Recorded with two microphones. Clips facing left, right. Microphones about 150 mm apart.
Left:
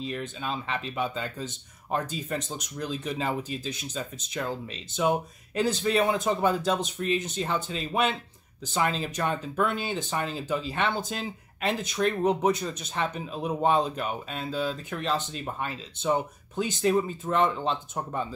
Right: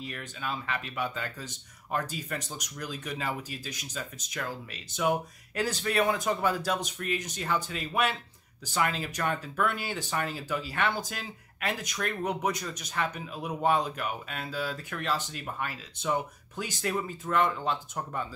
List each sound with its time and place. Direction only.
0.0 s speech: 25° left (ahead or behind)